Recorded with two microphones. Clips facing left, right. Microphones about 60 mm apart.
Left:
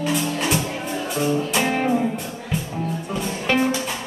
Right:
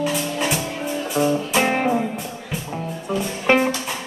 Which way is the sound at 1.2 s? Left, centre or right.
Centre.